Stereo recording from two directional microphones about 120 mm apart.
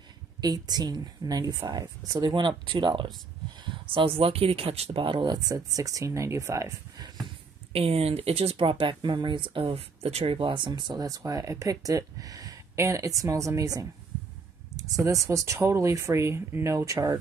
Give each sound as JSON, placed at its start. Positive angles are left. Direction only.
{"t": 0.4, "sound": "speech", "side_deg": -35}
{"t": 5.0, "sound": "speech", "side_deg": -40}
{"t": 7.7, "sound": "speech", "side_deg": -55}